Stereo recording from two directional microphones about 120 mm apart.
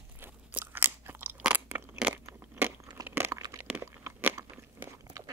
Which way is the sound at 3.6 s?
15° right (ahead or behind).